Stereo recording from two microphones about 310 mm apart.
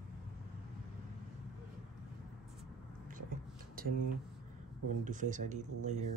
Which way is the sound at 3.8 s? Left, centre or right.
Right.